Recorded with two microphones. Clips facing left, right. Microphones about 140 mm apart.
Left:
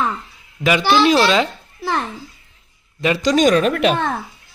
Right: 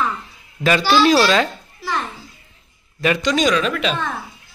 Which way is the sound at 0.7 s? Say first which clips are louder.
Even; 20° left (ahead or behind).